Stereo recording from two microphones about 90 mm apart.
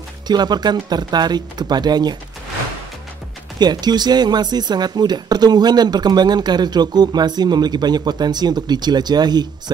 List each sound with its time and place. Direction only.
0.3 s speech: 50° right (ahead or behind)
3.5 s speech: 50° right (ahead or behind)